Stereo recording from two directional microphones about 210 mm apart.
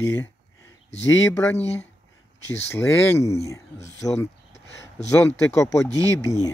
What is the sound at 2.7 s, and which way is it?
Speech, 10° left (ahead or behind).